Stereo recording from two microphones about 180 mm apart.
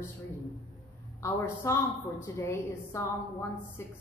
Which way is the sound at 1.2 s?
15° left (ahead or behind).